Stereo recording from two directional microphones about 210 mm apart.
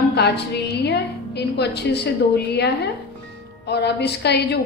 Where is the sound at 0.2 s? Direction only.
50° left (ahead or behind).